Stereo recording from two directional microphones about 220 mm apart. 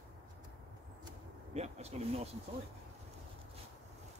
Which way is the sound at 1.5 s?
30° right (ahead or behind).